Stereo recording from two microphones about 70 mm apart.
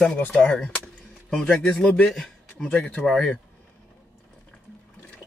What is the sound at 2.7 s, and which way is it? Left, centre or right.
Speech, left.